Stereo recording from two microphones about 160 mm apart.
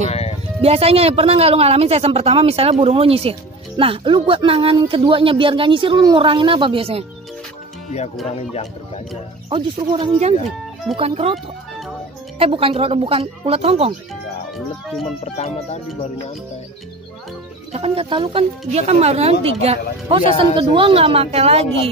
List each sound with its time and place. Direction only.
0.1 s music: 40° left (ahead or behind)
0.6 s speech: 40° right (ahead or behind)
8.3 s speech: 40° left (ahead or behind)
9.5 s speech: 30° right (ahead or behind)
12.4 s speech: 35° right (ahead or behind)
15.2 s speech: 40° left (ahead or behind)
17.7 s speech: 35° right (ahead or behind)